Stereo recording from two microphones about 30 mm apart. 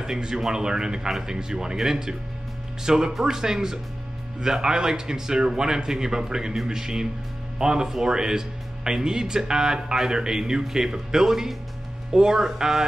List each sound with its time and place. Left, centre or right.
0.0 s speech: centre
11.2 s speech: centre
12.1 s speech: right